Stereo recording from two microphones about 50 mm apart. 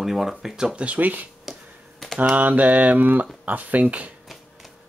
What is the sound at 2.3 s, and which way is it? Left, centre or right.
Speech, right.